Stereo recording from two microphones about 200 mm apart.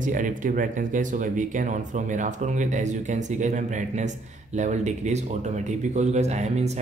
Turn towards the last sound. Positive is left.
turn(degrees=-35)  # may be behind; listen again after turning